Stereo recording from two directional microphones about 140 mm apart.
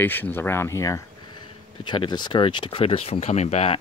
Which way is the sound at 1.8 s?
35° left (ahead or behind).